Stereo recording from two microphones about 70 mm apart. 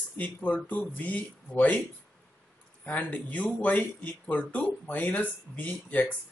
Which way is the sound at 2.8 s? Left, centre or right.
Left.